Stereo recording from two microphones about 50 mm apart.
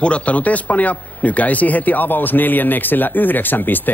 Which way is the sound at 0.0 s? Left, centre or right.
Left.